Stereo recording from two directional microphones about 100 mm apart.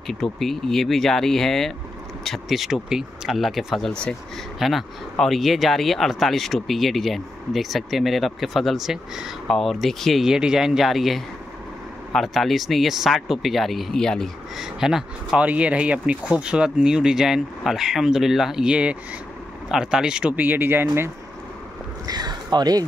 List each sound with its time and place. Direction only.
0.0 s speech: centre (ahead or behind); by 21.1 s 25° right (ahead or behind)
22.0 s speech: 40° right (ahead or behind)